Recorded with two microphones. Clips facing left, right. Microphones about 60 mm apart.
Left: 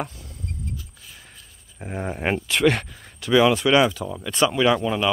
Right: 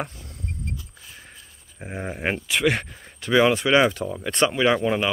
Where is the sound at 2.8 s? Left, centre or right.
Right.